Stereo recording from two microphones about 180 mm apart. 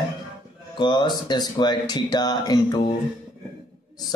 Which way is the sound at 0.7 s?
25° left (ahead or behind).